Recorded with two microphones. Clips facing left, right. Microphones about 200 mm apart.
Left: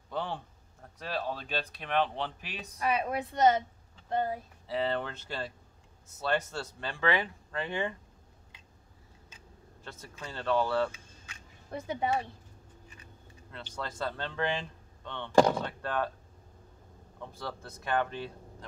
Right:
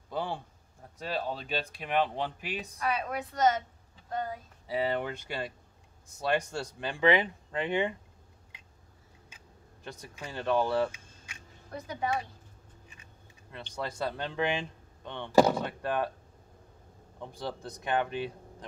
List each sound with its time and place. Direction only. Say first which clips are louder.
0.1 s speech: right 1 dB; 10° right (ahead or behind)
2.8 s a woman's voice: left 3 dB; 25° left (ahead or behind)
4.6 s speech: right 1 dB; 10° right (ahead or behind)
9.8 s speech: right 2 dB; 15° right (ahead or behind)
11.7 s a woman's voice: left 2 dB; 25° left (ahead or behind)
13.8 s speech: right 2 dB; 15° right (ahead or behind)
17.2 s speech: right 3 dB; 15° right (ahead or behind)